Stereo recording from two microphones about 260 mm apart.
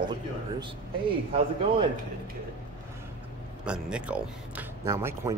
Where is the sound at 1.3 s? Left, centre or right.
Right.